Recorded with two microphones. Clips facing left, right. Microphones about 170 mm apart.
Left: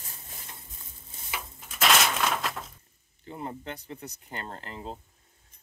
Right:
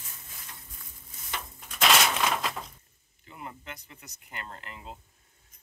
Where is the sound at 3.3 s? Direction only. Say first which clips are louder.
Left 6 dB; 35° left (ahead or behind).